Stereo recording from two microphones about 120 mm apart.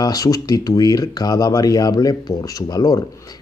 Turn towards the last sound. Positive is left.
turn(degrees=30)  # may be behind; listen again after turning